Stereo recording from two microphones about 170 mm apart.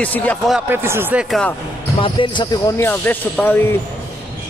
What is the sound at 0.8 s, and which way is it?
Speech, 15° right (ahead or behind).